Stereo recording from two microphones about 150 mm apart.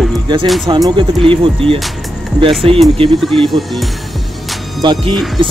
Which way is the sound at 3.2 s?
Centre (ahead or behind).